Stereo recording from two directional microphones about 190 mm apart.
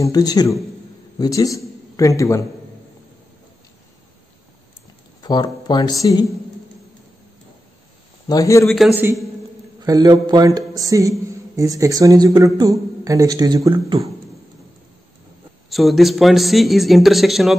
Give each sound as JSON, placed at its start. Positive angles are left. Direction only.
{"t": 0.0, "sound": "a man's voice", "side_deg": 20}
{"t": 5.2, "sound": "speech", "side_deg": 20}
{"t": 8.3, "sound": "a man's voice", "side_deg": 15}
{"t": 8.6, "sound": "a man's voice", "side_deg": 0}
{"t": 9.8, "sound": "speech", "side_deg": -20}
{"t": 15.7, "sound": "a man's voice", "side_deg": 0}